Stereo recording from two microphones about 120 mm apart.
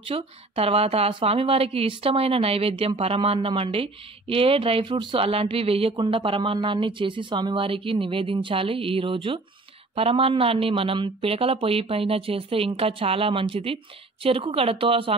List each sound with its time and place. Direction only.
0.0 s speech: 50° right (ahead or behind)